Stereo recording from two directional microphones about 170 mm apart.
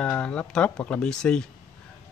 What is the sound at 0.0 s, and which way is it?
Speech, 5° left (ahead or behind).